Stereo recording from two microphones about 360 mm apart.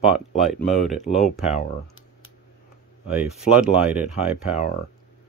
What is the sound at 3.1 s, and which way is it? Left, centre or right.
Speech, centre.